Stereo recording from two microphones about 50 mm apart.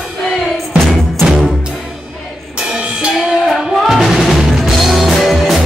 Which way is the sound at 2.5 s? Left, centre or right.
Centre.